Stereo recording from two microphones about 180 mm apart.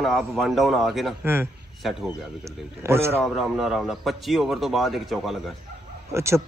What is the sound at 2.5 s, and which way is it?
Speech, 15° right (ahead or behind).